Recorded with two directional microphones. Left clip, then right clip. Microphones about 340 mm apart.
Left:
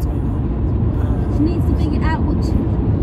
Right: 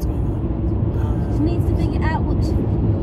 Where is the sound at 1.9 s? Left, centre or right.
Right.